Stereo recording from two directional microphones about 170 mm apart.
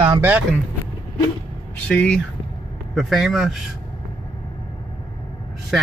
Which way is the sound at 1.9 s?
5° left (ahead or behind).